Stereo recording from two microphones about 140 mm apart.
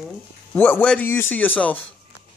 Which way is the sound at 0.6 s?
10° left (ahead or behind).